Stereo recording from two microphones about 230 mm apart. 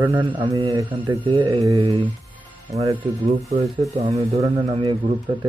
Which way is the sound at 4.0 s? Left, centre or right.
Right.